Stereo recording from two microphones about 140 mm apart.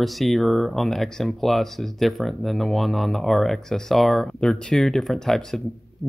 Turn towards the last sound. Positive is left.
turn(degrees=5)  # may be behind; listen again after turning